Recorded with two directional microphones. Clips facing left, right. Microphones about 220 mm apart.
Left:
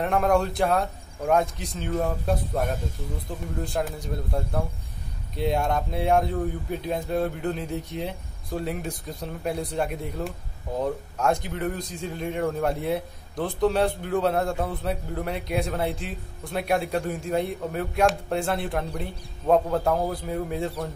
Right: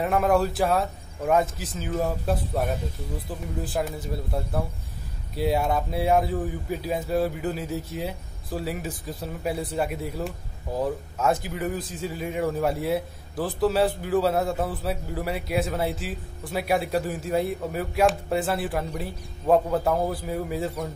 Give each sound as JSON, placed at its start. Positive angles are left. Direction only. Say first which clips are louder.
{"t": 0.0, "sound": "a man's voice", "louder": "even", "side_deg": 0}